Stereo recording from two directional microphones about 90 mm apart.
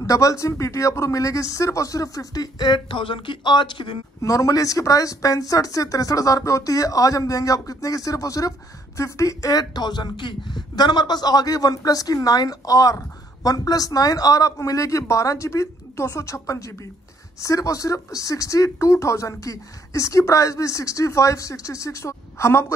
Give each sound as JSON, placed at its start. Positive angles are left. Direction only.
{"t": 0.0, "sound": "speech", "side_deg": 40}
{"t": 4.2, "sound": "speech", "side_deg": 40}